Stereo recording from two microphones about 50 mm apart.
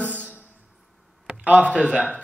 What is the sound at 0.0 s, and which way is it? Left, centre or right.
Music, left.